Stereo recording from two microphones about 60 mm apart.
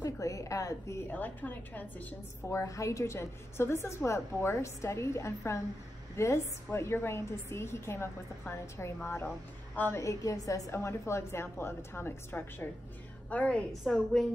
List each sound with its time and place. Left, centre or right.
0.0 s a sound: left
1.0 s a woman's voice: left
2.6 s a woman's voice: left
9.9 s a woman's voice: left
10.7 s a woman's voice: left
11.4 s a woman's voice: left
13.3 s a woman's voice: left
13.7 s a woman's voice: centre